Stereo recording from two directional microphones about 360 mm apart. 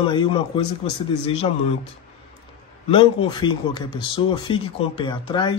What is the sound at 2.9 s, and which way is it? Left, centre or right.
Speech, centre.